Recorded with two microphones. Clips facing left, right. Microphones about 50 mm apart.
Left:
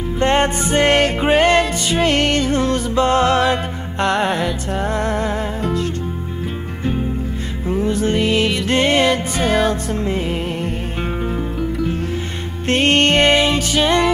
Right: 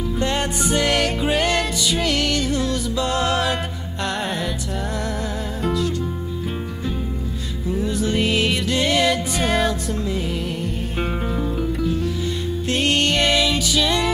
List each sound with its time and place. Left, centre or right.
0.2 s music: left
7.6 s music: left
9.4 s music: centre
10.0 s music: left
12.6 s music: left